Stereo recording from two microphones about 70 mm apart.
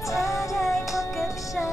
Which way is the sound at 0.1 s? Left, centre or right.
Left.